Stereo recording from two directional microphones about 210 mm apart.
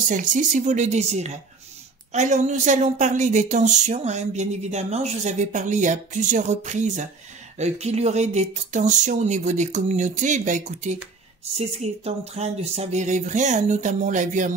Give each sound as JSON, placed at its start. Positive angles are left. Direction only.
{"t": 0.1, "sound": "speech", "side_deg": -35}